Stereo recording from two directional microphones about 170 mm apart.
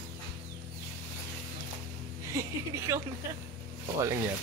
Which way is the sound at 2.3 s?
15° right (ahead or behind).